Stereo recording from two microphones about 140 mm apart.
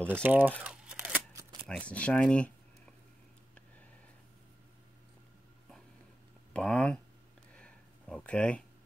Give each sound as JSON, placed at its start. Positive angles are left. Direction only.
{"t": 0.1, "sound": "speech", "side_deg": -15}
{"t": 0.7, "sound": "crumpling", "side_deg": -10}
{"t": 1.7, "sound": "speech", "side_deg": 10}
{"t": 6.5, "sound": "speech", "side_deg": 5}
{"t": 7.5, "sound": "a sound", "side_deg": 5}